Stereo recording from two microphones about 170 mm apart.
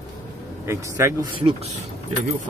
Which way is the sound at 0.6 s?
15° right (ahead or behind).